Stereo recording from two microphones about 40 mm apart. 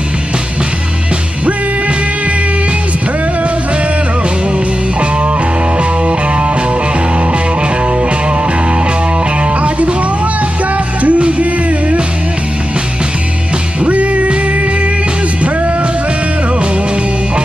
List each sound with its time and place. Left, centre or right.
9.6 s music: right
11.0 s music: right
13.8 s music: right